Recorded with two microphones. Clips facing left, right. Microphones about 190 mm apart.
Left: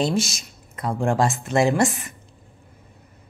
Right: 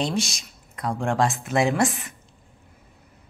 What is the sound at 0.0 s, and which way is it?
Speech, centre (ahead or behind).